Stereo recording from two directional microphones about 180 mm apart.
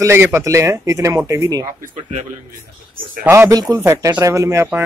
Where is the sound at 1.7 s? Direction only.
45° right (ahead or behind).